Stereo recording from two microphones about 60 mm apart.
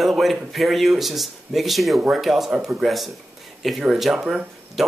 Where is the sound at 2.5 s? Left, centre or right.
Centre.